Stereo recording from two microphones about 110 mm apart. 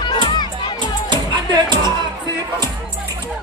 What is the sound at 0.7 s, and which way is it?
Music, 45° right (ahead or behind).